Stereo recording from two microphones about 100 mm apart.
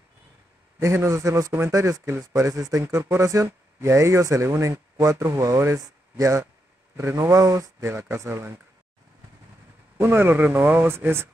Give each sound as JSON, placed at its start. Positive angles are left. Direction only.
{"t": 0.7, "sound": "speech", "side_deg": -30}
{"t": 9.9, "sound": "speech", "side_deg": -25}